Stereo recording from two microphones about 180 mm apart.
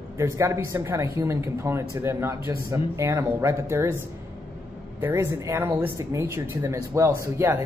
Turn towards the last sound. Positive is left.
turn(degrees=-15)  # may be behind; listen again after turning